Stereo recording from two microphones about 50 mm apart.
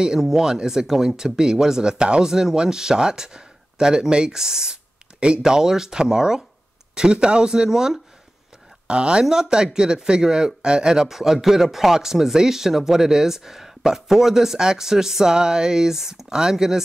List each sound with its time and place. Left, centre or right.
0.0 s a man's voice: centre